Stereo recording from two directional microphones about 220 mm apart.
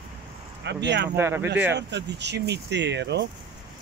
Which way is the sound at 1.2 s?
10° right (ahead or behind).